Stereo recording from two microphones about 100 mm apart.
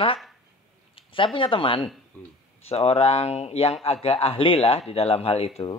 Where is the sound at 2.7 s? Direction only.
90° left.